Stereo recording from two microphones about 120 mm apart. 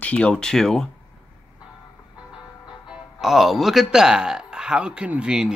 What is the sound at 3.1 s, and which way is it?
A man's voice, centre (ahead or behind).